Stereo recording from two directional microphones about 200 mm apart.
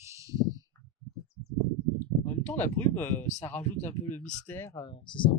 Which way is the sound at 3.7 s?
35° left (ahead or behind).